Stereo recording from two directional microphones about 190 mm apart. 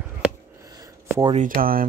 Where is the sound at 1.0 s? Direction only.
15° right (ahead or behind).